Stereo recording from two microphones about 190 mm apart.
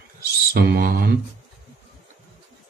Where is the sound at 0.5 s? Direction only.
50° right (ahead or behind).